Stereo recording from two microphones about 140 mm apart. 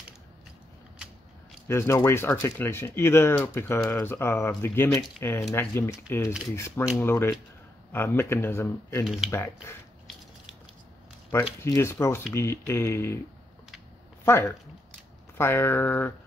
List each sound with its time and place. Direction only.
1.7 s speech: 20° left (ahead or behind)
9.0 s speech: 5° right (ahead or behind)
9.3 s speech: 20° left (ahead or behind)
11.6 s speech: 20° left (ahead or behind)
14.2 s speech: 15° left (ahead or behind)